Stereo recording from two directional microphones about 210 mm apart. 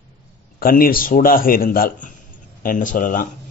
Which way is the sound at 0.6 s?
45° left (ahead or behind).